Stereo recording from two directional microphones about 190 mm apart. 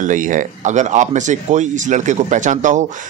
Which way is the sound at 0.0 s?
45° right (ahead or behind).